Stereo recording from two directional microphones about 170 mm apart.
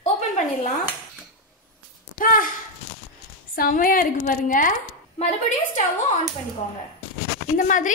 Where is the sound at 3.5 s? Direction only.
60° left (ahead or behind).